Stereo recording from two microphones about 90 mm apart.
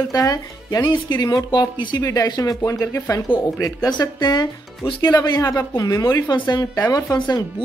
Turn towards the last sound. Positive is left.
turn(degrees=55)  # may be behind; listen again after turning